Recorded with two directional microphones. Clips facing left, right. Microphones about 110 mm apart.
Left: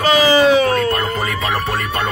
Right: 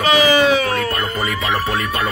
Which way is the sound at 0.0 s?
30° left (ahead or behind).